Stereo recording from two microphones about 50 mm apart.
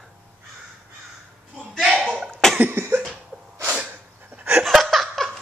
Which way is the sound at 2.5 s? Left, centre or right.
Right.